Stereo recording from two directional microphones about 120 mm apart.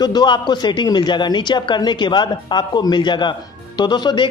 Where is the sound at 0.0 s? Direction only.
35° left (ahead or behind).